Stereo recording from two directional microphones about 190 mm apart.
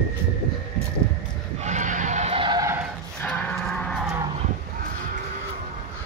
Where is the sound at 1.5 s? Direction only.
40° right (ahead or behind); by 2.8 s 15° right (ahead or behind).